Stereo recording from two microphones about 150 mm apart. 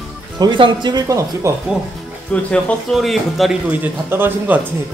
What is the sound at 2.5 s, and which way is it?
A man's voice, 5° left (ahead or behind).